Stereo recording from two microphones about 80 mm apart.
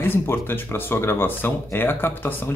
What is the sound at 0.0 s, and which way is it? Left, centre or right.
Speech, left.